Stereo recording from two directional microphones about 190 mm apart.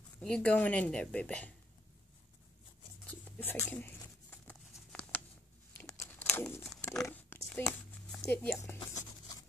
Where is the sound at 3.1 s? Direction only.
10° left (ahead or behind).